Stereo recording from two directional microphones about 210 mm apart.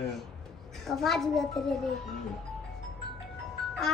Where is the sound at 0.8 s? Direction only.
Centre (ahead or behind).